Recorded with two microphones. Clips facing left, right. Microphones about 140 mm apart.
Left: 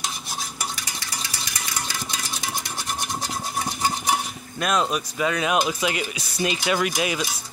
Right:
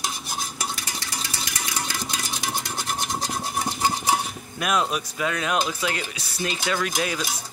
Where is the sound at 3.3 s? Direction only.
15° right (ahead or behind).